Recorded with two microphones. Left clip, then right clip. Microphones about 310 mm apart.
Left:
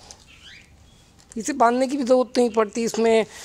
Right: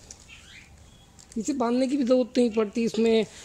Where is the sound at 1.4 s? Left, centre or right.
Left.